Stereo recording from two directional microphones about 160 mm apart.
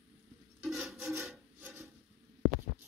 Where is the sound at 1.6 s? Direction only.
15° right (ahead or behind).